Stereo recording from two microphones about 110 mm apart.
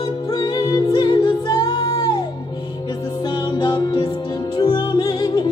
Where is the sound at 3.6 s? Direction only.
40° left (ahead or behind).